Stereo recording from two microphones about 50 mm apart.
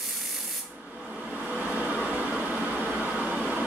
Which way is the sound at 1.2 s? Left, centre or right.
Centre.